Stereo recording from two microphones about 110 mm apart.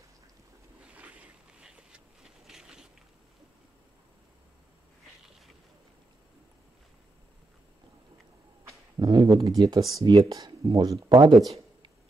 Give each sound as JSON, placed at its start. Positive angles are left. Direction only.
{"t": 0.8, "sound": "a sound", "side_deg": -10}
{"t": 8.6, "sound": "speech", "side_deg": -40}
{"t": 11.1, "sound": "speech", "side_deg": -50}